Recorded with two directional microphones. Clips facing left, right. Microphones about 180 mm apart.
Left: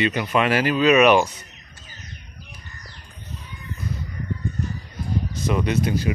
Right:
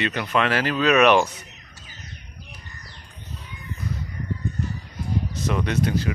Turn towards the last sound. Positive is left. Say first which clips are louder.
# left 1 dB
turn(degrees=10)  # may be behind; listen again after turning